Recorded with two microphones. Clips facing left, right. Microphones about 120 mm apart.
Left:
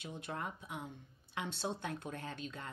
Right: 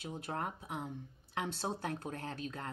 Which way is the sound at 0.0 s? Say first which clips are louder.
Right 3 dB; 40° right (ahead or behind).